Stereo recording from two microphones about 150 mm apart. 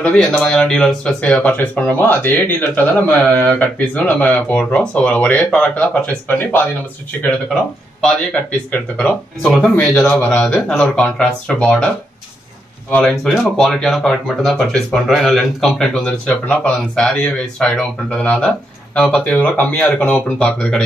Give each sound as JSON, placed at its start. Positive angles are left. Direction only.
{"t": 0.0, "sound": "speech", "side_deg": 5}
{"t": 8.0, "sound": "speech", "side_deg": 5}
{"t": 12.9, "sound": "speech", "side_deg": 5}